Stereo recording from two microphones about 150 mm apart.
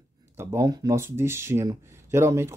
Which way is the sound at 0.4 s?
20° right (ahead or behind).